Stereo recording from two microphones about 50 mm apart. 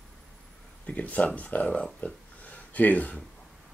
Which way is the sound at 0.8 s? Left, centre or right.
Left.